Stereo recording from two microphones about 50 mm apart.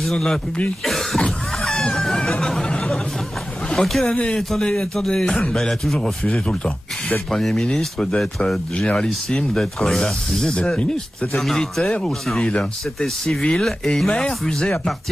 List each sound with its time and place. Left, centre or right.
0.1 s speech: centre
0.8 s cough: centre
1.6 s a sound: centre
3.7 s speech: centre
4.0 s speech: left
4.4 s speech: centre
7.2 s speech: centre
11.4 s speech: centre
11.8 s speech: centre